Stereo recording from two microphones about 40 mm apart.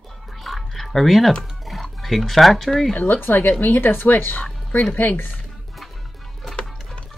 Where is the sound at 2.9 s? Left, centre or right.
Left.